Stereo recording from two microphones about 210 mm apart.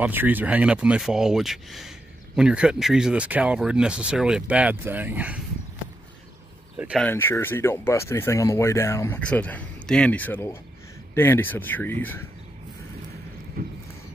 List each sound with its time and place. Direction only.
0.0 s speech: 10° right (ahead or behind)
7.0 s speech: 10° left (ahead or behind)
13.6 s horse: 45° right (ahead or behind)